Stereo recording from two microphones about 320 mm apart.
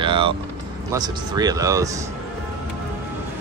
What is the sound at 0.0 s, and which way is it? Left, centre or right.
Vehicle, centre.